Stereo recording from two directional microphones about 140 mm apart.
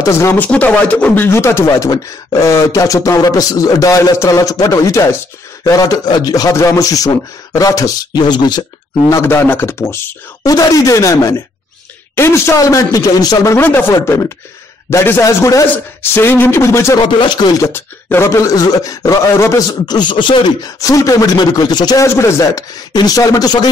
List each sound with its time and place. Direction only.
0.0 s speech: 20° left (ahead or behind)
9.2 s speech: 15° left (ahead or behind)
17.0 s speech: 30° left (ahead or behind)
17.7 s speech: 20° left (ahead or behind)
22.0 s speech: 20° left (ahead or behind)